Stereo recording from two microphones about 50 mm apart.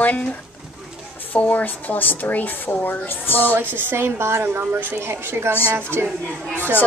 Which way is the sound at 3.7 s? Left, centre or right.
Right.